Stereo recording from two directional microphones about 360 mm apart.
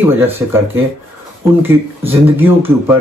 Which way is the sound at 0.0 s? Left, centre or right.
Centre.